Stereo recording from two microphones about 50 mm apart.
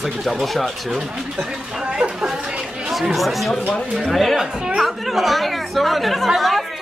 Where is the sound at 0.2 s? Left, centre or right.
Centre.